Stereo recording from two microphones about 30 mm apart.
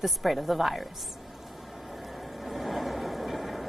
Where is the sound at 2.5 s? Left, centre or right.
Centre.